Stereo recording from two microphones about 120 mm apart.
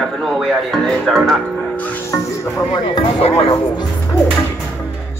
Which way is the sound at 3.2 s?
50° left (ahead or behind).